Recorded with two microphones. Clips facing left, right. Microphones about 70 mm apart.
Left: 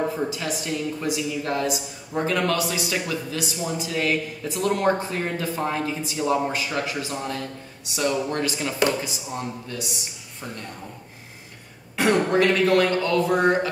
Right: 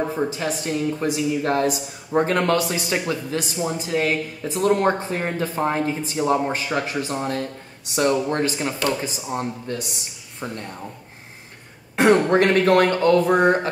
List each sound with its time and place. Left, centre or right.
0.3 s a woman's voice: right
1.0 s a woman's voice: right
12.0 s speech: right